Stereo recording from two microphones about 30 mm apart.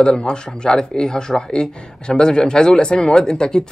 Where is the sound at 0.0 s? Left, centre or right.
Left.